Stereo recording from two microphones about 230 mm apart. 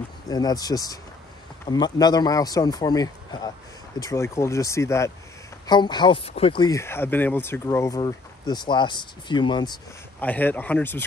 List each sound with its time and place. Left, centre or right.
0.3 s speech: centre
10.2 s speech: centre